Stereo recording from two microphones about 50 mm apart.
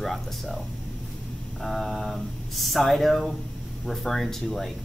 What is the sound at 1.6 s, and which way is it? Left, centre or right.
Speech, centre.